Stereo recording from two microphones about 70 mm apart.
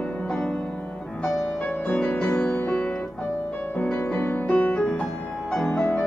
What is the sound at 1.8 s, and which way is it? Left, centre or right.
Music, centre.